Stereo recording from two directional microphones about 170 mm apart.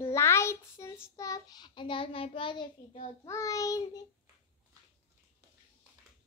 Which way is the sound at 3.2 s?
20° left (ahead or behind).